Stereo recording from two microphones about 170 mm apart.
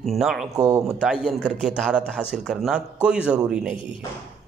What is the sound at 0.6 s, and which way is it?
Speech, 20° right (ahead or behind).